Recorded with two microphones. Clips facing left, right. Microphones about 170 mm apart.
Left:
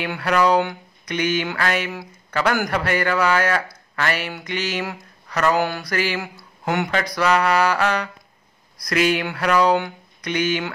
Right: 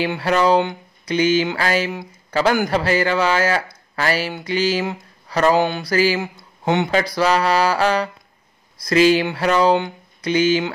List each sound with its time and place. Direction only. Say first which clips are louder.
0.0 s a man's voice: right 2 dB; 30° right (ahead or behind)